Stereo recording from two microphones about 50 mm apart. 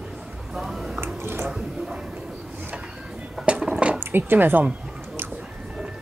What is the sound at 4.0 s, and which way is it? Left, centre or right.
Speech, right.